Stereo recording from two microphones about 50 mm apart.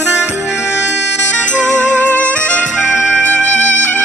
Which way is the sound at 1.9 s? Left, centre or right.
Left.